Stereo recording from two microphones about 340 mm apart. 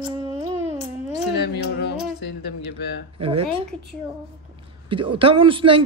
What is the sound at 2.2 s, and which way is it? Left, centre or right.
Music, left.